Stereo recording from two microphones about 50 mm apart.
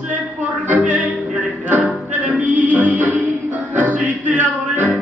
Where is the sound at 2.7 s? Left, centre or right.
Right.